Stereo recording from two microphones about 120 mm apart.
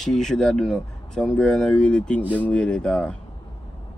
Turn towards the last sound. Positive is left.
turn(degrees=10)  # may be behind; listen again after turning